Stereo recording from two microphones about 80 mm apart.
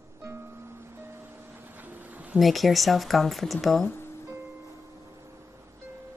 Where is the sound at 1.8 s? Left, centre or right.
Right.